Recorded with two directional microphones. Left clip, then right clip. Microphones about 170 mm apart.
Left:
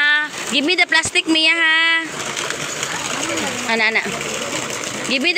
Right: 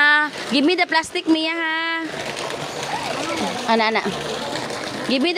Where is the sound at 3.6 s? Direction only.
30° right (ahead or behind).